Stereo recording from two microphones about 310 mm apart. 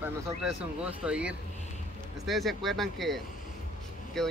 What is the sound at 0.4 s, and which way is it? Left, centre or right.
Speech, centre.